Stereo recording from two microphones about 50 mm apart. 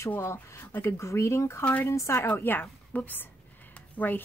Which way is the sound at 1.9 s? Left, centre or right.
Left.